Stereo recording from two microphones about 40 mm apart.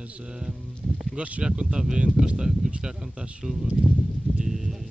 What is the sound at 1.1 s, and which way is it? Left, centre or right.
Speech, right.